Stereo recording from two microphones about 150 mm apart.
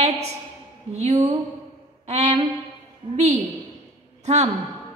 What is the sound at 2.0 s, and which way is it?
Music, 50° right (ahead or behind).